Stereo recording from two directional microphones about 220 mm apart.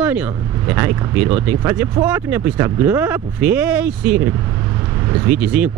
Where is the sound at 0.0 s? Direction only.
5° right (ahead or behind).